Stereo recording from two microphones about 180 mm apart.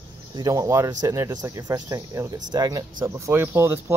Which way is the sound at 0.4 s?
20° right (ahead or behind).